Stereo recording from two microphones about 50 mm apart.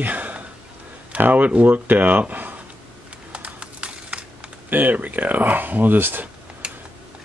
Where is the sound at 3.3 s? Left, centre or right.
Right.